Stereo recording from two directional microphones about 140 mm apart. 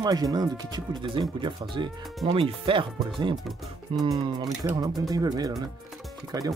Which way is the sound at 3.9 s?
35° right (ahead or behind).